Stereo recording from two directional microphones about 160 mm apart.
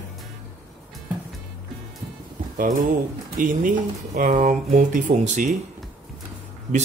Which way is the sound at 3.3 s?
55° right (ahead or behind).